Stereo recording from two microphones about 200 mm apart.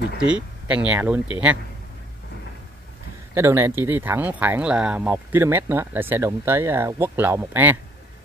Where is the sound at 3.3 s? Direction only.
10° right (ahead or behind).